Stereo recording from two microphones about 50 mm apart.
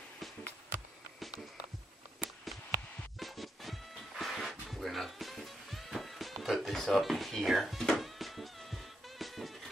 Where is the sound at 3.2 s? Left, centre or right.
Centre.